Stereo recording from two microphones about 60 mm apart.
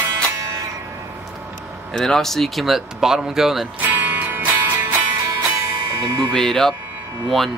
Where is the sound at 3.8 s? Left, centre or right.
Right.